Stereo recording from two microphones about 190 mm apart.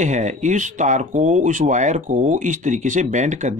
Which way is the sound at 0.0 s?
40° right (ahead or behind).